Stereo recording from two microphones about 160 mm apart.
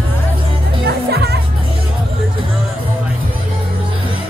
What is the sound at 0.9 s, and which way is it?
Music, 90° right.